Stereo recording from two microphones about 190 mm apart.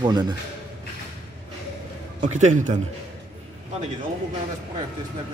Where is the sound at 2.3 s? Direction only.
40° right (ahead or behind).